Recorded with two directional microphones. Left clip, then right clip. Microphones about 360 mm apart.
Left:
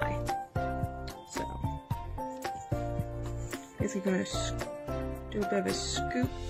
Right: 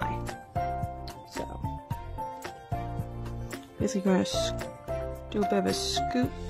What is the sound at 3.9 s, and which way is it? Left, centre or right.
Speech, centre.